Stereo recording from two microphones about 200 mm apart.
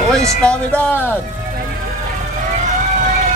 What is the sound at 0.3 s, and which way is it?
Speech, 5° left (ahead or behind).